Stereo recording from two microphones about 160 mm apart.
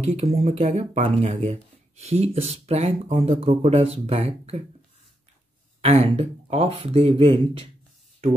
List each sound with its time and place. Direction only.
0.0 s speech: 40° right (ahead or behind)
5.8 s speech: 35° right (ahead or behind)